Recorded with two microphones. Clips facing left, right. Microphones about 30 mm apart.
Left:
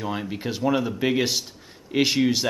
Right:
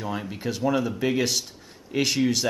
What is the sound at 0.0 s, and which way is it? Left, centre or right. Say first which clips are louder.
Speech: left 1 dB; centre.